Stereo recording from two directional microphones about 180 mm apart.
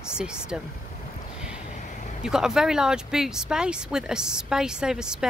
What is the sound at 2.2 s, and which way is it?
Speech, 5° right (ahead or behind).